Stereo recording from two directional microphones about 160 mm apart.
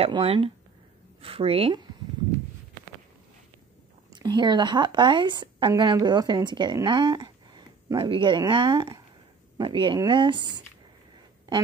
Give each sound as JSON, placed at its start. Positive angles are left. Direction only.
{"t": 0.0, "sound": "speech", "side_deg": -35}
{"t": 4.1, "sound": "a woman's voice", "side_deg": -25}